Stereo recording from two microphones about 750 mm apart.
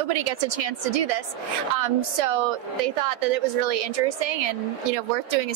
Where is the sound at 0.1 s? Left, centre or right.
Right.